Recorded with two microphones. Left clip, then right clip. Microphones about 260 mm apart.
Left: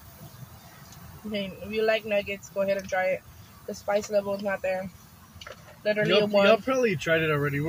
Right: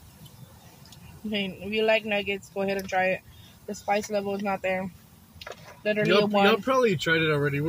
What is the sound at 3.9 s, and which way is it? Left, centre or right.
Speech, left.